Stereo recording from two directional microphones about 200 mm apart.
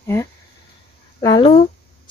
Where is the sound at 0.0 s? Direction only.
15° left (ahead or behind).